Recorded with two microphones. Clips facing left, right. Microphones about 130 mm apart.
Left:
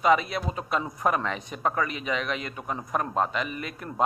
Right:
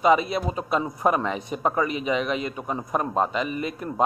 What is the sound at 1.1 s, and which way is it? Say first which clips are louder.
Speech: right 4 dB; 10° right (ahead or behind).